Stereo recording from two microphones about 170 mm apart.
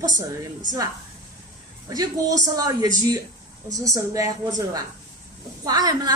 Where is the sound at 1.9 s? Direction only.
20° right (ahead or behind).